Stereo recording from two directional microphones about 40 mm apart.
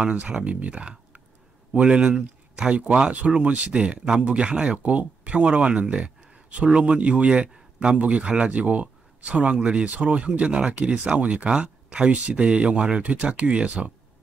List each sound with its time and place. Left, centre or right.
0.1 s speech: right
2.7 s speech: right
13.8 s speech: centre